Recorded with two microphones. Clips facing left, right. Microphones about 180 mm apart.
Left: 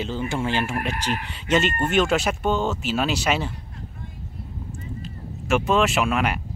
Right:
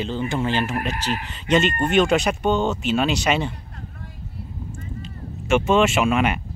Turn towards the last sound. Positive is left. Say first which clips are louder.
# right 3 dB
turn(degrees=0)  # may be behind; listen again after turning